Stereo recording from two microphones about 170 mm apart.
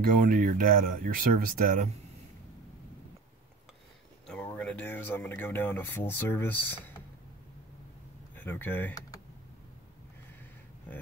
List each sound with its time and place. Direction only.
0.2 s speech: 50° right (ahead or behind)
4.3 s speech: 10° left (ahead or behind)
8.4 s speech: 10° left (ahead or behind)